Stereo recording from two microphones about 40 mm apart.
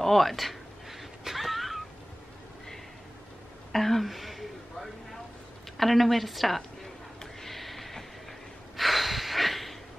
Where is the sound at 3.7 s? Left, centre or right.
Centre.